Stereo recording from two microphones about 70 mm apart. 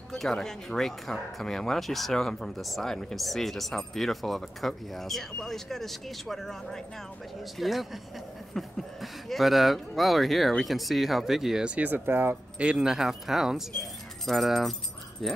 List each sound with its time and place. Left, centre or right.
0.1 s speech: centre
11.6 s speech: right
12.5 s speech: centre